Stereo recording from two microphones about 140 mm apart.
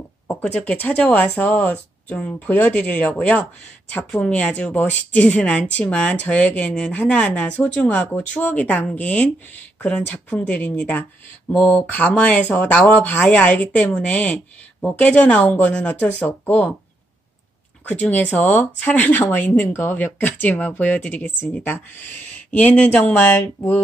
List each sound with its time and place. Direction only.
0.3 s speech: 10° left (ahead or behind)
17.8 s speech: 10° left (ahead or behind)